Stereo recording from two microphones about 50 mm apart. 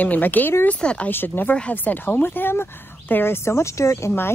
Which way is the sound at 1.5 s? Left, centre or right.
Left.